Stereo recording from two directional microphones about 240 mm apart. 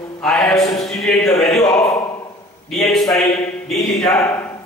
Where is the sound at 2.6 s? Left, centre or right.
Centre.